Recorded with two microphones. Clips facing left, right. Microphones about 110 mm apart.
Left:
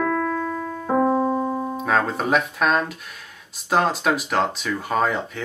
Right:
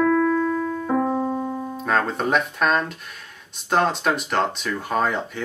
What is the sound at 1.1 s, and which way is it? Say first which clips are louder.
Piano: left 3 dB; 35° left (ahead or behind).